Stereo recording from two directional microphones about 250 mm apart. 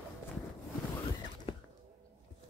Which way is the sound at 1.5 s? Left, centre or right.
Left.